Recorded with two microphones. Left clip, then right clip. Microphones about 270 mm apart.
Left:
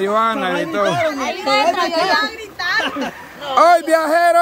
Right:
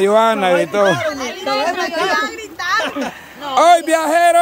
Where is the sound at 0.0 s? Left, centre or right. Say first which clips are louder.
Right 4 dB; centre.